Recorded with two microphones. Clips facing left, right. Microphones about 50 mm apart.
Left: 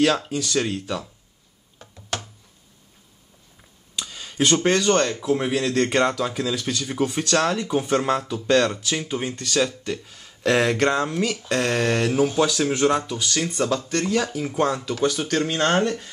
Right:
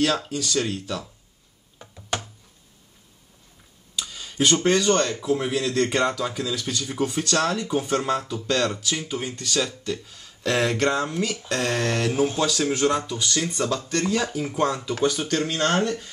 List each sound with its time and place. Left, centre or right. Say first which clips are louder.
0.0 s speech: left 3 dB; centre
1.8 s a sound: right 1 dB; centre
4.0 s speech: even; centre
13.2 s speech: left 1 dB; centre